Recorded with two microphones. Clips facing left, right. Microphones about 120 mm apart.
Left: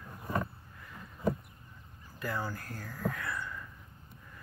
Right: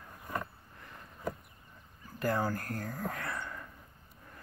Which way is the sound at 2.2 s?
45° right (ahead or behind).